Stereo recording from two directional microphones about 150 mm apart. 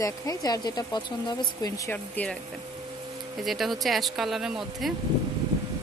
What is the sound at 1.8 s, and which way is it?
Speech, 10° left (ahead or behind).